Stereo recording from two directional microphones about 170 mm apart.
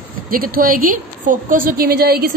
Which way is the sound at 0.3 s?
55° right (ahead or behind).